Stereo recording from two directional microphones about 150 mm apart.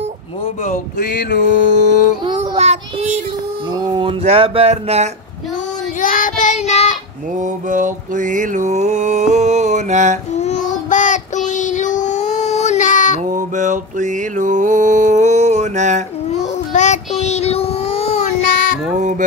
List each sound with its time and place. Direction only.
0.7 s male singing: 75° left (ahead or behind)
2.2 s child singing: 40° right (ahead or behind)
3.7 s a sound: 30° right (ahead or behind)
4.2 s speech: 40° right (ahead or behind)
5.9 s child singing: 65° left (ahead or behind); by 7.0 s 45° left (ahead or behind)
7.3 s mantra: 60° right (ahead or behind)
10.3 s child singing: 50° left (ahead or behind)
13.2 s mantra: 55° right (ahead or behind)
16.3 s child singing: 50° left (ahead or behind)
18.9 s honk: 55° right (ahead or behind)